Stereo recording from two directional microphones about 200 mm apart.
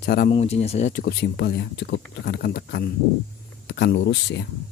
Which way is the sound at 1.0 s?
55° left (ahead or behind).